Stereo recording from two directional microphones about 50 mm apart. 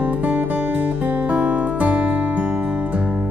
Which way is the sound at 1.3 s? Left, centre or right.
Right.